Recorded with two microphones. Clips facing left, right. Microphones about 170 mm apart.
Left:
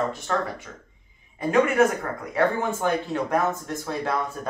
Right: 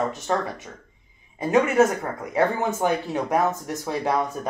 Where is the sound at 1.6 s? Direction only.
20° right (ahead or behind).